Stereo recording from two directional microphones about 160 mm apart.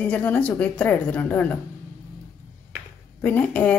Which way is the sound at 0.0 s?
10° left (ahead or behind).